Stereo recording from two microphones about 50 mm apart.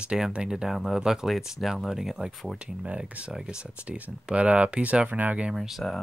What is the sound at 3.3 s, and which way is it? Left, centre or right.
Speech, centre.